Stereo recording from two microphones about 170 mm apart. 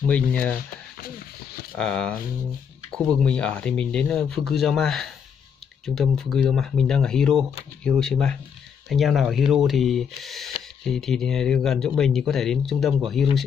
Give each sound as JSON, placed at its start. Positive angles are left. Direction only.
{"t": 0.1, "sound": "speech", "side_deg": 10}
{"t": 1.0, "sound": "a sound", "side_deg": 60}
{"t": 1.8, "sound": "speech", "side_deg": 5}
{"t": 3.2, "sound": "speech", "side_deg": 5}